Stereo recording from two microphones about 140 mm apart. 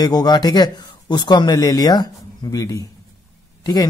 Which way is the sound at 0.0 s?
30° left (ahead or behind).